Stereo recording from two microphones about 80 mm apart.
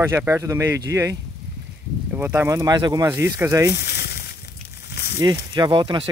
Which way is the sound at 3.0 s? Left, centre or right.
Right.